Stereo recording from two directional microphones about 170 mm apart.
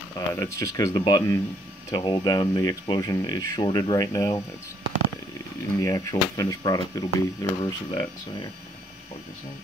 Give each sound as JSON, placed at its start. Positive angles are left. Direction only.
{"t": 0.3, "sound": "speech", "side_deg": 20}
{"t": 5.8, "sound": "speech", "side_deg": 20}